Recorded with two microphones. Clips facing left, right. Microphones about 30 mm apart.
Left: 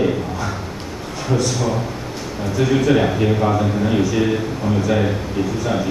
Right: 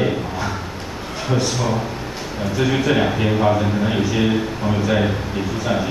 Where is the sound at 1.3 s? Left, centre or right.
Right.